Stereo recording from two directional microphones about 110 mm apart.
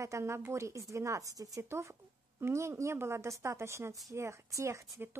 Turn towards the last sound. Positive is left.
turn(degrees=-25)  # may be behind; listen again after turning